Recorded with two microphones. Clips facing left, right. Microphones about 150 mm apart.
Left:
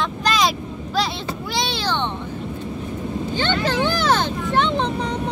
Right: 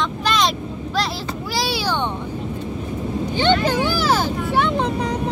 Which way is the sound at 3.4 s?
15° right (ahead or behind).